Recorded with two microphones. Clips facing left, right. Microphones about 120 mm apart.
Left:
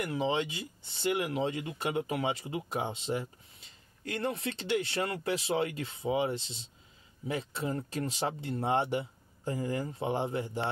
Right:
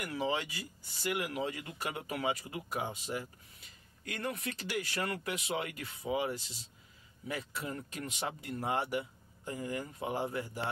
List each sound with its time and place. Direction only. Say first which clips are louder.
0.0 s speech: left 4 dB; 25° left (ahead or behind)